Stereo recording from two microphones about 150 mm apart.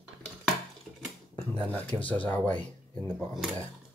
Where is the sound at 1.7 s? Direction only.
10° left (ahead or behind).